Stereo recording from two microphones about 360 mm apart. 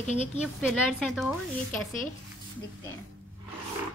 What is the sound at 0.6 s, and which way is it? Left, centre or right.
Speech, centre.